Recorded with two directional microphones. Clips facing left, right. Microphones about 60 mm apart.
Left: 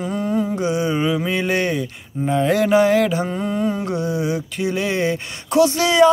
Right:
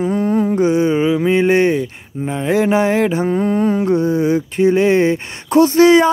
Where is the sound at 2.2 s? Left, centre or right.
Centre.